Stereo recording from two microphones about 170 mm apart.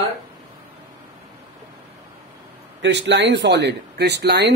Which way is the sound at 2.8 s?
90° right.